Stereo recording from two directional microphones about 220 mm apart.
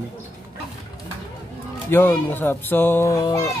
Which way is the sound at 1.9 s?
10° left (ahead or behind).